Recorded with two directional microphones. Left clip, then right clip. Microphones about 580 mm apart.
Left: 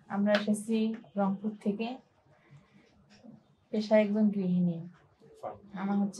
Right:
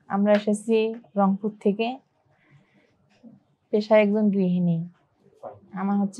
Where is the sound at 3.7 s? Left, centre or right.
Right.